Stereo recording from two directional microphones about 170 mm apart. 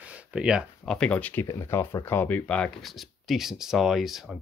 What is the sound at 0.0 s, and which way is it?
Speech, 5° right (ahead or behind).